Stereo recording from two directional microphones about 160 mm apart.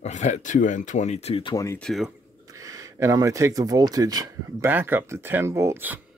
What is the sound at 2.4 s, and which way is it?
Speech, 20° right (ahead or behind).